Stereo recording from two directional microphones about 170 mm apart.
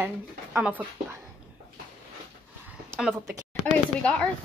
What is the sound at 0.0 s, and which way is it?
Speech, 10° right (ahead or behind).